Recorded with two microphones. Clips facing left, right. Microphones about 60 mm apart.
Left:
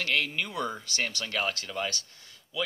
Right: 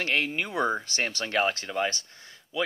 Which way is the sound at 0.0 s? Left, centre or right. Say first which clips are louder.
Right 2 dB; right.